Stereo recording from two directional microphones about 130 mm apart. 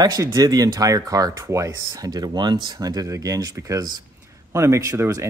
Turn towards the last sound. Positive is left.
turn(degrees=-25)  # may be behind; listen again after turning